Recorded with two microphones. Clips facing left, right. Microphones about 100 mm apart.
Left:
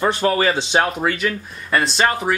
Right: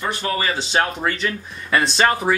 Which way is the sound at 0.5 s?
15° left (ahead or behind).